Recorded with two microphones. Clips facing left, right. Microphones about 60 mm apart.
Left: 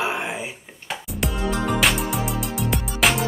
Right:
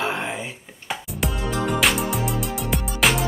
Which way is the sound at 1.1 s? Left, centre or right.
Centre.